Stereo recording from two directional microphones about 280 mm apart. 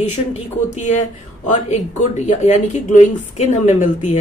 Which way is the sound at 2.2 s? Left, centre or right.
Left.